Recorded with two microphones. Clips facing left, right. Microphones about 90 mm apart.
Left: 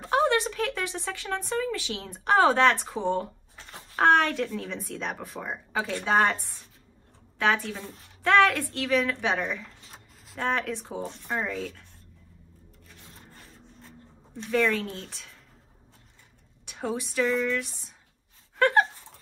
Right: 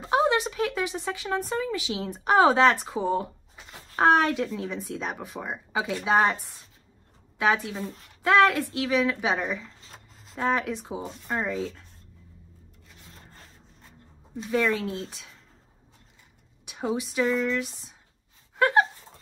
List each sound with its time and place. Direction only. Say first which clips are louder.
0.0 s speech: right 1 dB; 15° right (ahead or behind)
7.3 s speech: right 1 dB; 10° right (ahead or behind)
11.5 s speech: right 3 dB; 20° right (ahead or behind)
14.3 s speech: even; 10° right (ahead or behind)
16.6 s speech: right 2 dB; 10° right (ahead or behind)
18.6 s a sound: even; 10° right (ahead or behind)